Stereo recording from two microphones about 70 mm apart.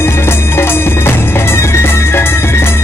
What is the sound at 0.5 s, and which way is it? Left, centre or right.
Music, left.